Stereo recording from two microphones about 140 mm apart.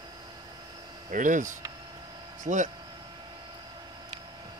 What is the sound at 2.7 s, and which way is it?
Vehicle, 30° right (ahead or behind).